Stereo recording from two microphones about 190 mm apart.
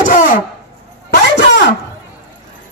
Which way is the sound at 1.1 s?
60° left (ahead or behind).